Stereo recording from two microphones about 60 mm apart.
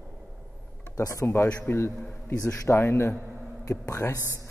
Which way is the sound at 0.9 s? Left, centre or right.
Left.